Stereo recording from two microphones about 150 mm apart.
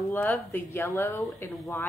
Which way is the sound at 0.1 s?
15° left (ahead or behind).